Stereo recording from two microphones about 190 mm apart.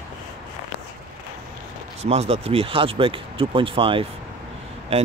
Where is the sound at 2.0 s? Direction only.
35° right (ahead or behind).